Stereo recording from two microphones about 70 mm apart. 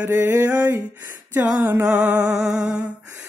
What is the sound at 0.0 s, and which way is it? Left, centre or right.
Music, right.